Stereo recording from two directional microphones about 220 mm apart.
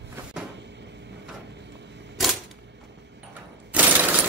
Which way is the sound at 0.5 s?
50° right (ahead or behind).